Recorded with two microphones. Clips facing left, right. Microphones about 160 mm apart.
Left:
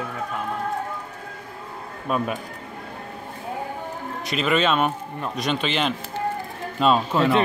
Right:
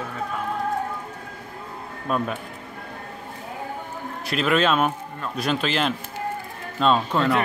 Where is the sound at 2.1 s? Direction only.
5° left (ahead or behind).